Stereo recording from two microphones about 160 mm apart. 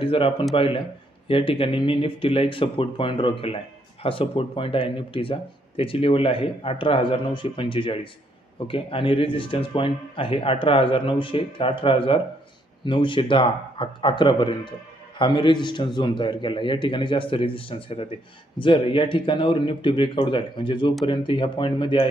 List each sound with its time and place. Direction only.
0.0 s speech: 35° left (ahead or behind)